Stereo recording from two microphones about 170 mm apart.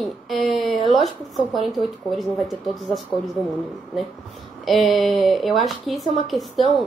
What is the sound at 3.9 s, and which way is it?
Speech, centre (ahead or behind).